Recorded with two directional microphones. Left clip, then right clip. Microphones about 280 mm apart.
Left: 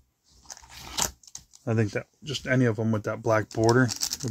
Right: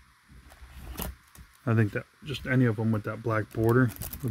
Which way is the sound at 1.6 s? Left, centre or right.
Centre.